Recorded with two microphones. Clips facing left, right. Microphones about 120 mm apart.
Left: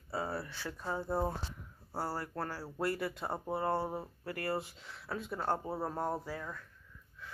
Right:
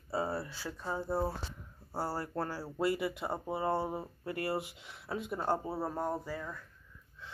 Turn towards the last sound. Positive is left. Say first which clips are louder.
# right 1 dB
turn(degrees=0)  # may be behind; listen again after turning